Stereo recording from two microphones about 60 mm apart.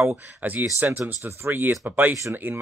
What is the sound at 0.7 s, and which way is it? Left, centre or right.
Speech, right.